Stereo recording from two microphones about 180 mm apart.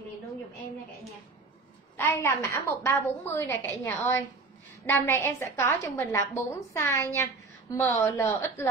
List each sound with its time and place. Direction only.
2.0 s a woman's voice: 15° left (ahead or behind)